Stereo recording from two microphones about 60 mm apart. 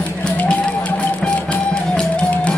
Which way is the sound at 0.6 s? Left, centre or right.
Left.